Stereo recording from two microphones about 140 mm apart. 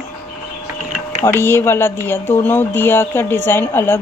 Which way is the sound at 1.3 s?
15° left (ahead or behind).